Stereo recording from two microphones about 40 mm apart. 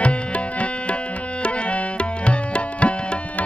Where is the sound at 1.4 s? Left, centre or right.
Left.